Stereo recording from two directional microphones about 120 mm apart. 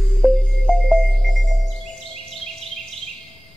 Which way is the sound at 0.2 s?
Centre (ahead or behind).